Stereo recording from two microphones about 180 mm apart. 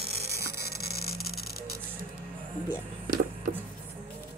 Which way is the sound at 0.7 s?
60° left (ahead or behind).